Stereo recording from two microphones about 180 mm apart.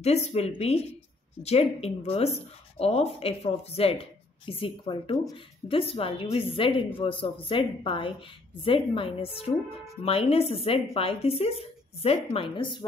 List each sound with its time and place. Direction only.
0.0 s a woman's voice: 35° left (ahead or behind)